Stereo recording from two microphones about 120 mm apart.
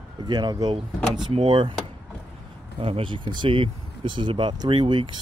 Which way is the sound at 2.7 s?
45° right (ahead or behind).